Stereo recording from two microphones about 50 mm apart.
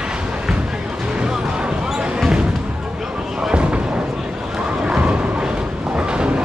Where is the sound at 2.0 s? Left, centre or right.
Centre.